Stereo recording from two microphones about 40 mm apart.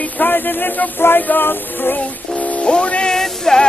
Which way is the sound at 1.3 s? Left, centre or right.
Left.